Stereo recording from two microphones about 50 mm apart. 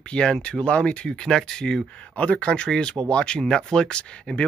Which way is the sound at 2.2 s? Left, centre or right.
Left.